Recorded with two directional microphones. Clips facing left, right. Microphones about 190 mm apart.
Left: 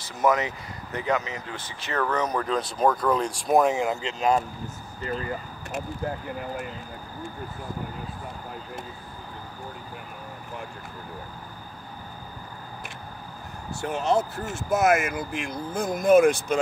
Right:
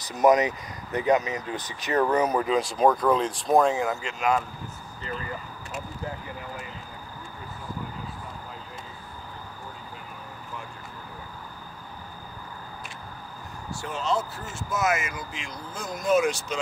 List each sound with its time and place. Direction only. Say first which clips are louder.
0.1 s speech: right 4 dB; 20° right (ahead or behind)
3.4 s speech: even; 10° left (ahead or behind)
3.7 s speech: left 1 dB; 25° left (ahead or behind)
5.7 s speech: left 5 dB; 55° left (ahead or behind)
13.7 s speech: left 4 dB; 60° left (ahead or behind)